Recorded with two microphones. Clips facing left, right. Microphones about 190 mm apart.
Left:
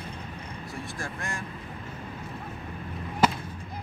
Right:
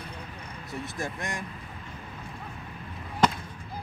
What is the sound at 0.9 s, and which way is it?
Speech, 20° right (ahead or behind).